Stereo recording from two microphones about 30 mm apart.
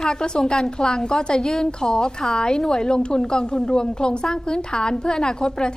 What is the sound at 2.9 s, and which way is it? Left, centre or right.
A woman's voice, left.